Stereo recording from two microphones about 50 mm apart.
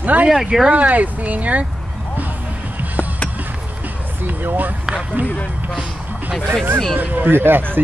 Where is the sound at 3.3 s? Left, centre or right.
Right.